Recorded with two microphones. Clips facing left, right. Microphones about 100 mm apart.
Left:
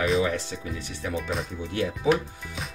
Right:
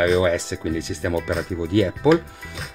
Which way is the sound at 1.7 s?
90° right.